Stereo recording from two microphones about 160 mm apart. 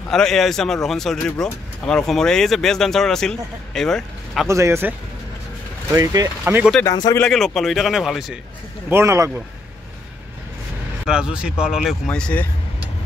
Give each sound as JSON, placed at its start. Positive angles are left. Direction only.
{"t": 0.1, "sound": "speech", "side_deg": 0}
{"t": 4.5, "sound": "speech", "side_deg": -15}
{"t": 5.9, "sound": "speech", "side_deg": -15}
{"t": 6.8, "sound": "speech", "side_deg": 20}
{"t": 7.2, "sound": "speech", "side_deg": 5}
{"t": 8.8, "sound": "speech", "side_deg": -15}
{"t": 11.1, "sound": "speech", "side_deg": -5}